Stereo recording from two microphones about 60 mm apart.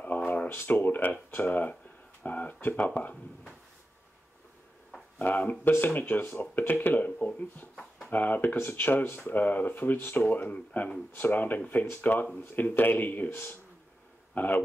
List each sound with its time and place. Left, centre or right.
0.0 s a sound: left
0.5 s speech: left
5.2 s a man's voice: left